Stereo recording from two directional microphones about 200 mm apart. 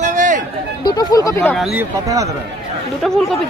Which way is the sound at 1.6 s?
5° right (ahead or behind).